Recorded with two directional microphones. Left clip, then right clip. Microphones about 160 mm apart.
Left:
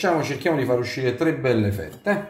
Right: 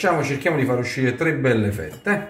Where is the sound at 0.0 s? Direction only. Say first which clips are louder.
Right 2 dB; 25° left (ahead or behind).